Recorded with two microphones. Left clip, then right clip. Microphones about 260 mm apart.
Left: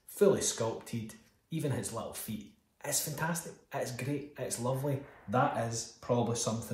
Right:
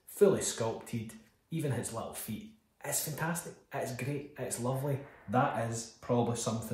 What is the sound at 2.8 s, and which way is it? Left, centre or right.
Speech, centre.